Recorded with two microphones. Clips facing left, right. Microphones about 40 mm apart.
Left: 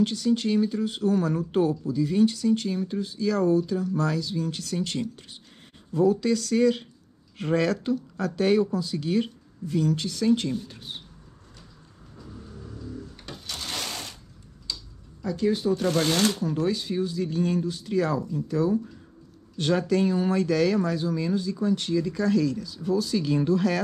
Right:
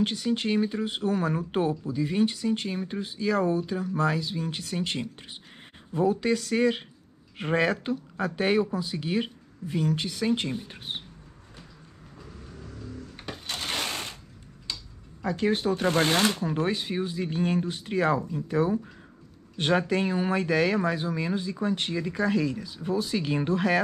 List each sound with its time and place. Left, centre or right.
0.0 s speech: right
13.2 s a sound: right
14.7 s tick-tock: right
15.2 s speech: right